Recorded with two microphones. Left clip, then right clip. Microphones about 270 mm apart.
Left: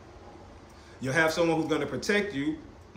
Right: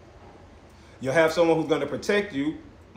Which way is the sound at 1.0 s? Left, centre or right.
Centre.